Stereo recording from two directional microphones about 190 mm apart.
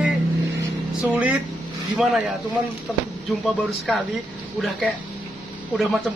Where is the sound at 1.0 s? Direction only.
10° right (ahead or behind).